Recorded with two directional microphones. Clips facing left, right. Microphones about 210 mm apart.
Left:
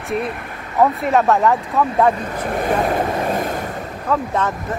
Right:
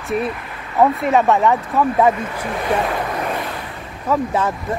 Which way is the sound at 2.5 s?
40° left (ahead or behind).